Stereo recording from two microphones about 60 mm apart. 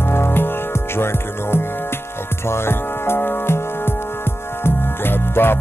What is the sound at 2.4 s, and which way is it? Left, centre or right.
Music, left.